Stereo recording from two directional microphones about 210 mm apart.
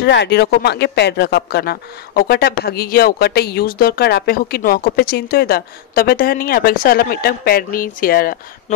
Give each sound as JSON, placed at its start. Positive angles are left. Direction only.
{"t": 0.0, "sound": "speech", "side_deg": 55}